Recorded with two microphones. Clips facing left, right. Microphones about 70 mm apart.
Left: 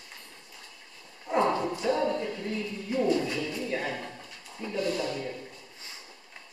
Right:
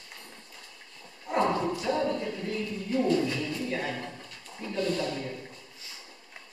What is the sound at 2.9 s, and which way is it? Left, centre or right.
Speech, centre.